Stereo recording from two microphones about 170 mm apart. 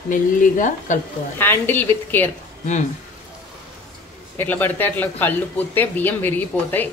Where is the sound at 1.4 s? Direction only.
10° left (ahead or behind).